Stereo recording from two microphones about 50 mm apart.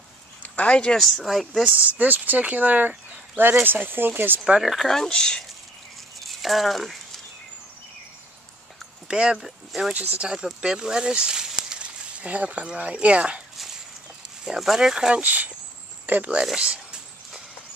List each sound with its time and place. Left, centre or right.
0.4 s a sound: left
0.9 s speech: centre
1.8 s speech: right
4.6 s speech: centre
4.8 s speech: centre
6.2 s speech: centre
9.0 s speech: centre
9.9 s speech: right
10.2 s speech: centre
12.2 s speech: right
14.4 s speech: centre
15.2 s speech: right
16.5 s a sound: centre